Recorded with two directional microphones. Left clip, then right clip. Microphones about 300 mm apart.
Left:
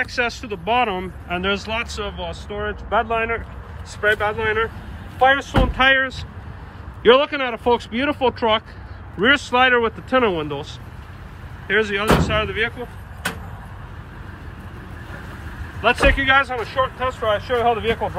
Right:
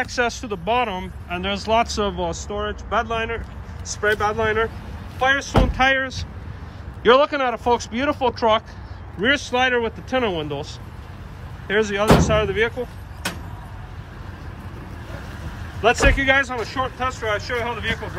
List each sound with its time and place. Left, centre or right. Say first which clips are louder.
0.0 s speech: even; centre
2.1 s speech: right 4 dB; right
2.5 s speech: left 4 dB; centre
5.2 s speech: left 3 dB; centre
15.8 s speech: left 1 dB; centre